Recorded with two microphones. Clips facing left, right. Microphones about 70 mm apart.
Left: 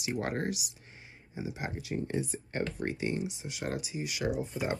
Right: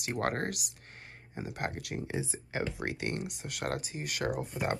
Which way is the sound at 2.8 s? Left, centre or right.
Right.